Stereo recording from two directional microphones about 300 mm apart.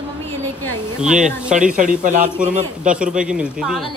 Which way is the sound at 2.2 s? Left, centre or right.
Centre.